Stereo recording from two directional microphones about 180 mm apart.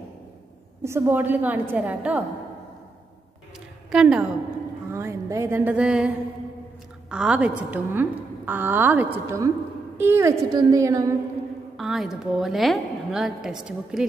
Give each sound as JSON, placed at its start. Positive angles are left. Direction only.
{"t": 0.8, "sound": "a woman's voice", "side_deg": -15}
{"t": 3.9, "sound": "a woman's voice", "side_deg": -5}
{"t": 11.7, "sound": "a woman's voice", "side_deg": 0}